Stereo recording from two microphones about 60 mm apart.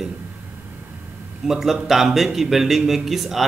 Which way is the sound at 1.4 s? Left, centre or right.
Centre.